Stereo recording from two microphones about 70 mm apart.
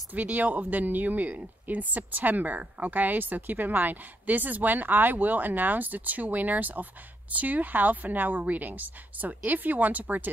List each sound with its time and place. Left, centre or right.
0.1 s speech: right